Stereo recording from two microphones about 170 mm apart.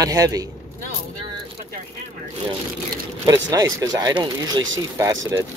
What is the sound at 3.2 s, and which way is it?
Speech, 20° right (ahead or behind).